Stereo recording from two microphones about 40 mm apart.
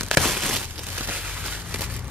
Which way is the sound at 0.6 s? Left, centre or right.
Right.